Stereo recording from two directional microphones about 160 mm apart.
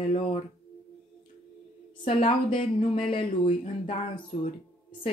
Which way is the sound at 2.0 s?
35° left (ahead or behind).